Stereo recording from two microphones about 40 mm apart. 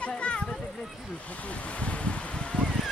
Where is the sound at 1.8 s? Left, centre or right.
Left.